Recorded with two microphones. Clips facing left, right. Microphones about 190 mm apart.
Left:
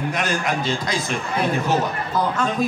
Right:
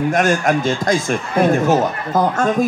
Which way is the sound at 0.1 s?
45° right (ahead or behind).